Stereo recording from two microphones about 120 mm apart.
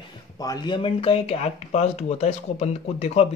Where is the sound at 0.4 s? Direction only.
35° left (ahead or behind).